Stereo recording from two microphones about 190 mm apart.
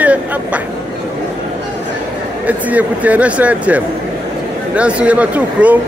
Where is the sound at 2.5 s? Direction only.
10° right (ahead or behind).